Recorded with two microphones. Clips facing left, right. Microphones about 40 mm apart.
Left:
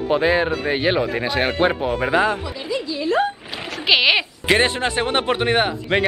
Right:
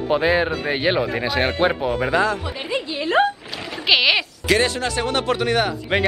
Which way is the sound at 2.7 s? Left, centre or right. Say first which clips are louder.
Right 1 dB; right.